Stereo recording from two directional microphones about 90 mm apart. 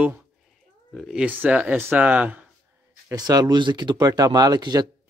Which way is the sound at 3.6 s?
60° right (ahead or behind).